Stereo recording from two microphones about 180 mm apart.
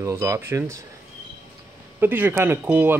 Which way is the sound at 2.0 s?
10° right (ahead or behind).